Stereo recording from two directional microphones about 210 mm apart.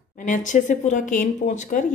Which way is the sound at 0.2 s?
35° left (ahead or behind).